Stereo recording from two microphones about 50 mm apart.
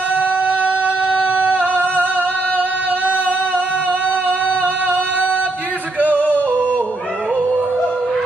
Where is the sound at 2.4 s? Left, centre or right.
Left.